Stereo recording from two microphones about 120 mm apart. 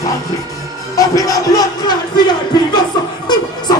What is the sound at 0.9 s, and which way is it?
Music, 30° left (ahead or behind).